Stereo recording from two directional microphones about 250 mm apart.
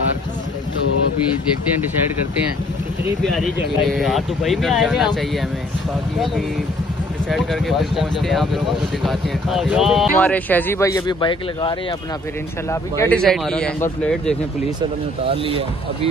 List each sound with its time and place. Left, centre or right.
3.2 s speech: centre
7.2 s speech: centre
13.0 s speech: centre
14.8 s speech: right